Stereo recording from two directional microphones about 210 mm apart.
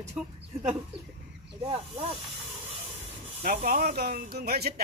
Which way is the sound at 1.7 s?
25° right (ahead or behind).